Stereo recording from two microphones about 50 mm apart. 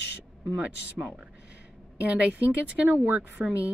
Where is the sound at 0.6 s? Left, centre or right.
Right.